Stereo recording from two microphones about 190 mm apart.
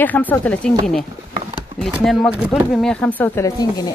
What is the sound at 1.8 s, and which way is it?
Speech, centre (ahead or behind).